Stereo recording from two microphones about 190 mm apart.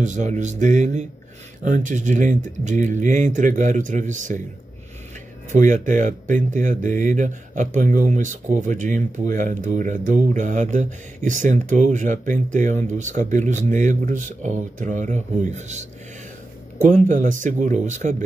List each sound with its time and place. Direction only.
0.0 s speech: 40° right (ahead or behind)
5.5 s speech: 40° right (ahead or behind)